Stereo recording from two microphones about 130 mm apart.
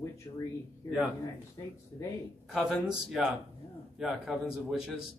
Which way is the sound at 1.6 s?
25° left (ahead or behind).